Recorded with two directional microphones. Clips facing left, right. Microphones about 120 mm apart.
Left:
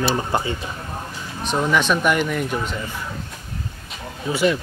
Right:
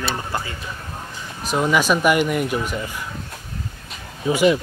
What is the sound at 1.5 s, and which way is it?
Speech, 10° right (ahead or behind).